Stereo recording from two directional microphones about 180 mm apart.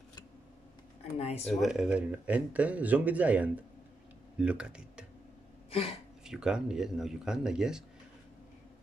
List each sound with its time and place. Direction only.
1.1 s speech: 35° left (ahead or behind)
1.5 s speech: centre (ahead or behind)
5.7 s speech: 30° left (ahead or behind)
6.2 s speech: 5° right (ahead or behind)